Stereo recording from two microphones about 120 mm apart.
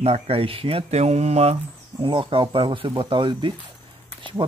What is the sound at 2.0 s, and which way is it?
Speech, 45° right (ahead or behind).